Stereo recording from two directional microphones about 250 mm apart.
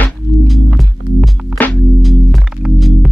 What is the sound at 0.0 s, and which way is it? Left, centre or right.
Music, centre.